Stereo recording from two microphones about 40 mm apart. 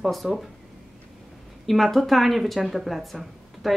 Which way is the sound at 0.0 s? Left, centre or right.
Centre.